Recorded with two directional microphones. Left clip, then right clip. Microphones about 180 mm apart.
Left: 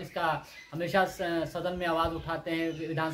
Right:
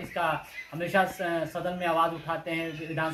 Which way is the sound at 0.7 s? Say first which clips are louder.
Right 1 dB; 25° left (ahead or behind).